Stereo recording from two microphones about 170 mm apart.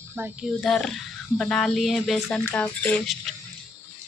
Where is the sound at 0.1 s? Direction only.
10° right (ahead or behind).